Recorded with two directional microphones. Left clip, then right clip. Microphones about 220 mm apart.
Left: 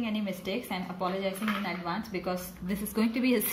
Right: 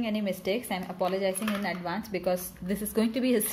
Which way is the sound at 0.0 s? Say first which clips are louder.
Right 4 dB; 40° right (ahead or behind).